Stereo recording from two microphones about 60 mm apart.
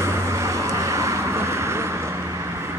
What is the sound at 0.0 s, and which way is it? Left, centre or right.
Vehicle, right.